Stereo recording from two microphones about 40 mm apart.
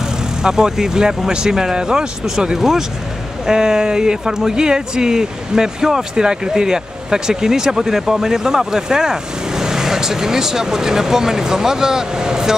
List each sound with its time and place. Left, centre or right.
0.4 s speech: centre